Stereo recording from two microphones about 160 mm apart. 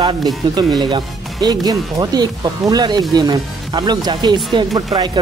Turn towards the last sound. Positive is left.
turn(degrees=-25)  # may be behind; listen again after turning